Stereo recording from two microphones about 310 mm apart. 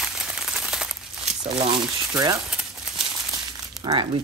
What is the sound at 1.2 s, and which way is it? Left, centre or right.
Speech, centre.